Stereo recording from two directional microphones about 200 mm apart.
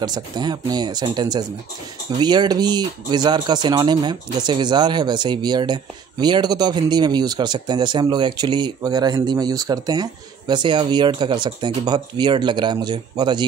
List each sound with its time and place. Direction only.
0.0 s speech: 20° right (ahead or behind)